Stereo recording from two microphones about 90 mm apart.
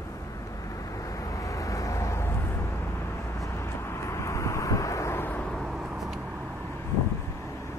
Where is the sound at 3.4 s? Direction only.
30° left (ahead or behind).